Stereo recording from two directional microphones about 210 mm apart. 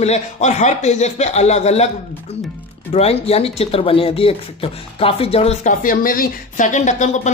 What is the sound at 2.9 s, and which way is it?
Speech, 30° left (ahead or behind).